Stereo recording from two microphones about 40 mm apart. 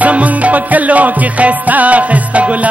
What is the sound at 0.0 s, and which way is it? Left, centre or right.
Music, right.